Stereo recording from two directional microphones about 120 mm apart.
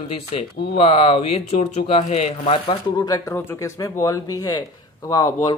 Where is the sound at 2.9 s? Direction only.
30° left (ahead or behind).